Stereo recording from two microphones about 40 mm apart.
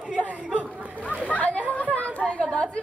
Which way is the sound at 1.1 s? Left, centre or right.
Left.